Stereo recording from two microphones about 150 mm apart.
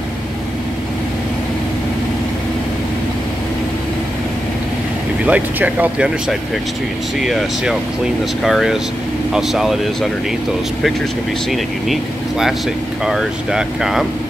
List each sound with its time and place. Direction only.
5.2 s speech: 10° right (ahead or behind)
8.5 s speech: centre (ahead or behind)
11.5 s speech: centre (ahead or behind)